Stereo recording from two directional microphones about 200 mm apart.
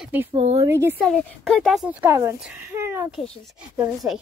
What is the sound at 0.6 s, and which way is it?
Speech, 10° right (ahead or behind).